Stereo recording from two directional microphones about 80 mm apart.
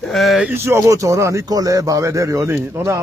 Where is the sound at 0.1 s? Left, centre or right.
Centre.